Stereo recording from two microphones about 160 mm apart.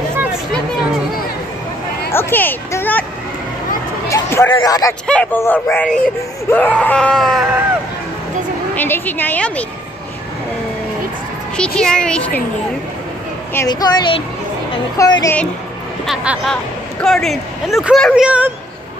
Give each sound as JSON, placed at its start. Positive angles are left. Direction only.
{"t": 2.1, "sound": "a sound", "side_deg": 15}
{"t": 4.1, "sound": "a sound", "side_deg": 15}
{"t": 4.6, "sound": "speech", "side_deg": 25}
{"t": 5.0, "sound": "speech", "side_deg": 10}
{"t": 8.7, "sound": "speech", "side_deg": 10}
{"t": 11.5, "sound": "speech", "side_deg": 5}
{"t": 13.7, "sound": "speech", "side_deg": 25}
{"t": 16.1, "sound": "speech", "side_deg": 0}